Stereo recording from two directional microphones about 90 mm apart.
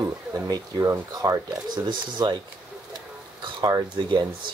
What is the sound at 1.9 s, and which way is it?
Speech, 60° right (ahead or behind).